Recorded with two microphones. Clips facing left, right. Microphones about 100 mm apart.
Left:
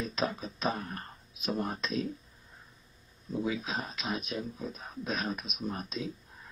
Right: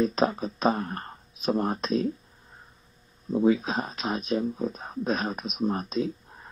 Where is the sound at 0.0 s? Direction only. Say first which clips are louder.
Right 9 dB; 40° right (ahead or behind).